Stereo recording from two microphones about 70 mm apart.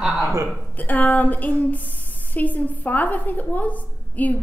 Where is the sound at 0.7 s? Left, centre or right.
Left.